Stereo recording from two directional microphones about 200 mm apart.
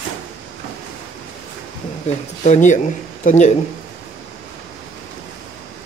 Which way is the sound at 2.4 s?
35° left (ahead or behind).